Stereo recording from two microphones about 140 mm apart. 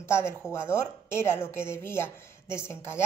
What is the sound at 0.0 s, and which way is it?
A woman's voice, 20° left (ahead or behind).